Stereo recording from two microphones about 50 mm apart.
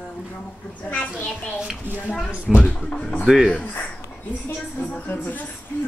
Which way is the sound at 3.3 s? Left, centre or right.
Centre.